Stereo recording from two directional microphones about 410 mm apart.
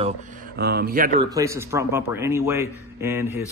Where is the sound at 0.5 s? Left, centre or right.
Right.